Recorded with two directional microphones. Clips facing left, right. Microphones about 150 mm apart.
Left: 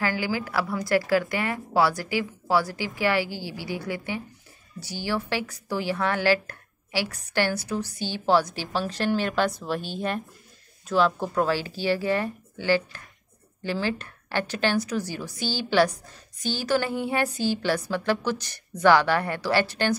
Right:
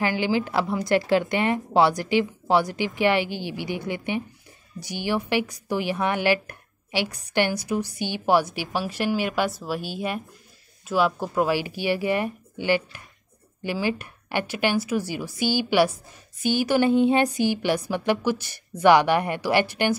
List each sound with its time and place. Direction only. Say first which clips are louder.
0.0 s a woman's voice: right 4 dB; 20° right (ahead or behind)